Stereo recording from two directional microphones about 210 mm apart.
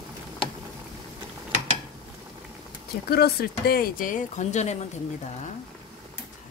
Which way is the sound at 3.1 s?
45° left (ahead or behind).